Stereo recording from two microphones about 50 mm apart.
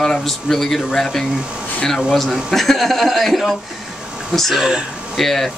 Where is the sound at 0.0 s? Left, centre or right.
Centre.